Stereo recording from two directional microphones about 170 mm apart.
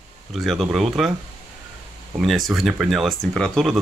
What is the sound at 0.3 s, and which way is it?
Speech, centre (ahead or behind).